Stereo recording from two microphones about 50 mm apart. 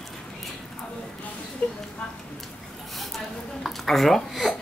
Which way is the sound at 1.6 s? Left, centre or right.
Left.